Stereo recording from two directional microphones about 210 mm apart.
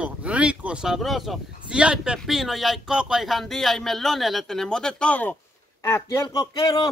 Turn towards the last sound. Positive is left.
turn(degrees=15)  # may be behind; listen again after turning